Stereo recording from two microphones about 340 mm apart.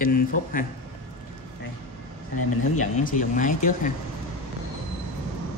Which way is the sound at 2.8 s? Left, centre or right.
Left.